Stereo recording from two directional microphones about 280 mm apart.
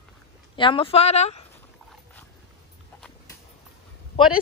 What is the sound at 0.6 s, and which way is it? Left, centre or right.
Speech, centre.